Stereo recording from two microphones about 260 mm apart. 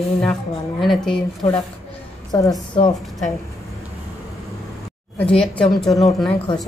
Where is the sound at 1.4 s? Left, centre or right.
Left.